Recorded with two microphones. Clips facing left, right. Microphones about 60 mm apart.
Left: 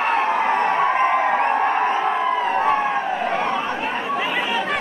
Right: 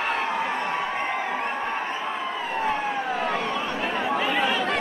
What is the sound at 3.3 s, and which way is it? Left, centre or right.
Chatter, left.